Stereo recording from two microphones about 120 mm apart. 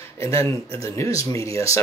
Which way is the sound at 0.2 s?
25° left (ahead or behind).